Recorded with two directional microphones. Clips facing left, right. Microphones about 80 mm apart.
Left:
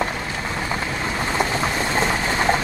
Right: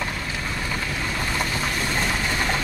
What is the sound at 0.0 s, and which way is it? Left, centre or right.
Vehicle, left.